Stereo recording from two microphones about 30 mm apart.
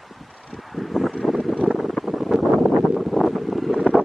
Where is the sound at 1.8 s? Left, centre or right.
Centre.